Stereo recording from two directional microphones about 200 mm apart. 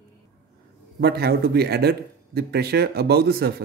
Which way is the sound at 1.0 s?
55° right (ahead or behind).